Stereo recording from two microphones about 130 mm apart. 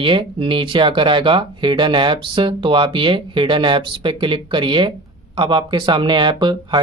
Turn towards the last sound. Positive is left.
turn(degrees=-35)  # may be behind; listen again after turning